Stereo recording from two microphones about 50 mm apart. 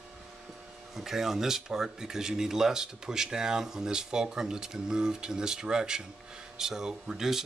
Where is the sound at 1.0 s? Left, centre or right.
Centre.